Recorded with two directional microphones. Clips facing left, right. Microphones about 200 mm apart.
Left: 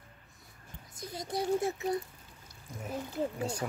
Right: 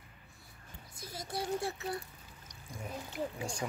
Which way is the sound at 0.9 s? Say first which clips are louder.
Left 5 dB; 20° left (ahead or behind).